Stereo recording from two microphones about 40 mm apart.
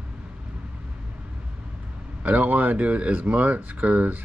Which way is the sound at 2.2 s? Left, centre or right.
Right.